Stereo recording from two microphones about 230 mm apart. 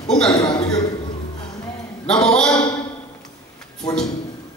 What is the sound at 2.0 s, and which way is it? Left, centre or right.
Speech, centre.